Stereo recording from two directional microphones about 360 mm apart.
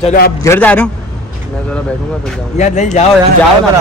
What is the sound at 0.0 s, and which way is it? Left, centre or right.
Speech, left.